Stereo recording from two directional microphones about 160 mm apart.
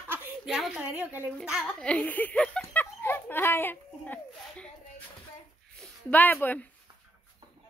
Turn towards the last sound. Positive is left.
turn(degrees=10)  # may be behind; listen again after turning